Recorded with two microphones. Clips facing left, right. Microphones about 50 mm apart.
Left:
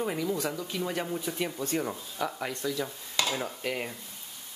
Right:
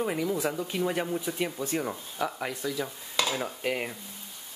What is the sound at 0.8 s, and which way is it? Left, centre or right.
Speech, centre.